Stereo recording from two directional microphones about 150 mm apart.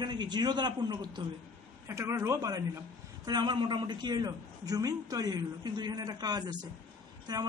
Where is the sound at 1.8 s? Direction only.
20° right (ahead or behind).